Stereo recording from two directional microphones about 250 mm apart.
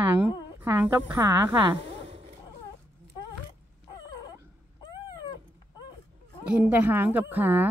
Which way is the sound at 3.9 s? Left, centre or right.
Centre.